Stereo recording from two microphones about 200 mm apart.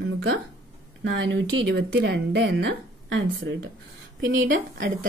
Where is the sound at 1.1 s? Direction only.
60° right (ahead or behind).